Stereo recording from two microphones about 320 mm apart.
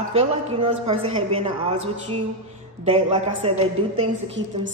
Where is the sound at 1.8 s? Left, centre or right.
Right.